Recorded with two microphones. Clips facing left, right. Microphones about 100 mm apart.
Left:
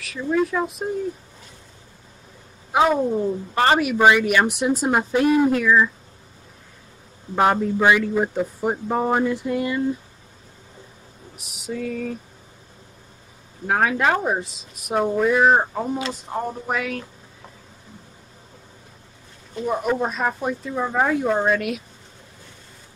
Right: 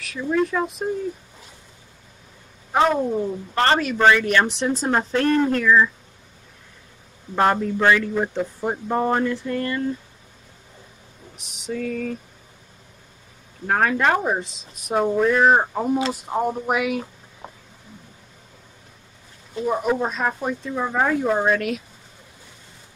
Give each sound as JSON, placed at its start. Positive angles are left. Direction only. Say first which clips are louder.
{"t": 0.0, "sound": "speech", "louder": "even", "side_deg": 0}
{"t": 2.7, "sound": "speech", "louder": "left 1 dB", "side_deg": 5}
{"t": 7.3, "sound": "speech", "louder": "left 1 dB", "side_deg": 10}
{"t": 11.3, "sound": "speech", "louder": "right 1 dB", "side_deg": 5}
{"t": 13.7, "sound": "speech", "louder": "even", "side_deg": 5}
{"t": 19.5, "sound": "speech", "louder": "right 1 dB", "side_deg": 0}